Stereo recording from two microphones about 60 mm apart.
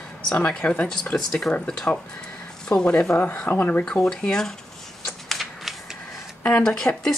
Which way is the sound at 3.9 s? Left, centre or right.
Centre.